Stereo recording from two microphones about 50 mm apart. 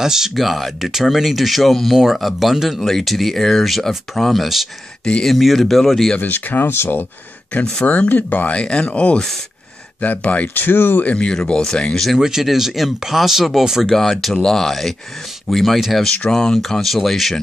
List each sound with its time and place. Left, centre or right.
0.0 s speech: centre
6.1 s speech: left
7.8 s speech: left
10.2 s speech: left
11.1 s speech: left
12.2 s speech: centre
13.8 s speech: centre
16.3 s speech: centre